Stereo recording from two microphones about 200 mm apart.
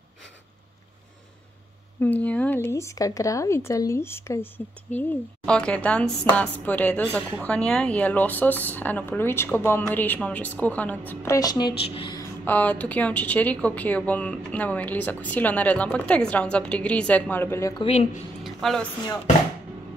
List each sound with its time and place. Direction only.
2.0 s speech: 10° left (ahead or behind)
12.4 s speech: 10° left (ahead or behind)
17.8 s speech: 35° left (ahead or behind)
18.4 s a sound: centre (ahead or behind)